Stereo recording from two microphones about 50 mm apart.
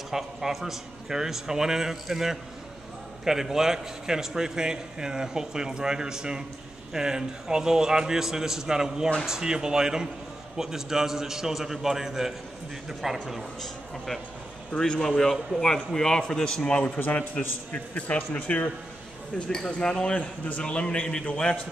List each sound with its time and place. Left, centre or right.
0.1 s a man's voice: centre
13.6 s a man's voice: centre; by 18.7 s left
19.3 s a man's voice: centre